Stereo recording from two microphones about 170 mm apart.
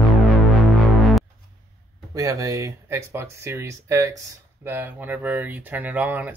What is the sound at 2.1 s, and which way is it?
Speech, 20° right (ahead or behind).